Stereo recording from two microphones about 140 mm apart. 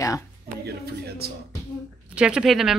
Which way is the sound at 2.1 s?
5° right (ahead or behind).